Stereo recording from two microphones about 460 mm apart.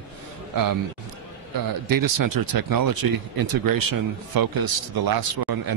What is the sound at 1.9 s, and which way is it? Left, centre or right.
Speech, right.